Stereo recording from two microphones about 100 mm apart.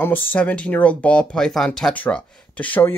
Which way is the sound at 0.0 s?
20° left (ahead or behind).